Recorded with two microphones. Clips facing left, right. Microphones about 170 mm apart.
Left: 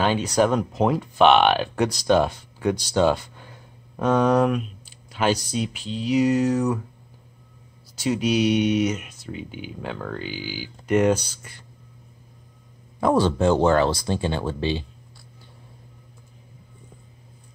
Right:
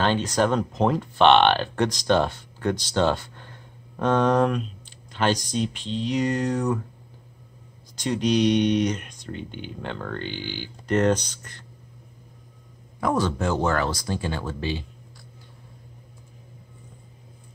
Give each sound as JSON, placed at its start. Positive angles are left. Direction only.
{"t": 0.0, "sound": "speech", "side_deg": 10}
{"t": 7.9, "sound": "speech", "side_deg": 5}
{"t": 13.0, "sound": "speech", "side_deg": 30}